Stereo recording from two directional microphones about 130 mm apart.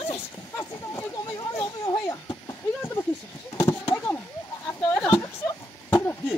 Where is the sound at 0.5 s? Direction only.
25° left (ahead or behind).